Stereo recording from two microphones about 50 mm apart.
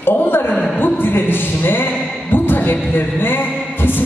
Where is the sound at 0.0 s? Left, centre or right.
Left.